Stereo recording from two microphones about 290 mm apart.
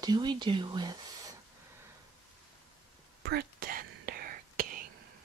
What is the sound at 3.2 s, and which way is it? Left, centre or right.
Whispering, right.